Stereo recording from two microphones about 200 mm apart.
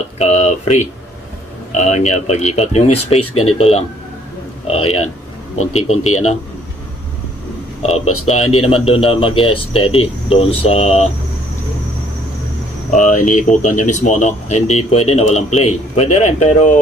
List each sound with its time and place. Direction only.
0.2 s speech: 35° left (ahead or behind)
5.6 s speech: 90° left
7.8 s speech: 35° left (ahead or behind)
8.1 s speech: 90° left
8.9 s speech: 30° left (ahead or behind)
12.9 s speech: 40° left (ahead or behind)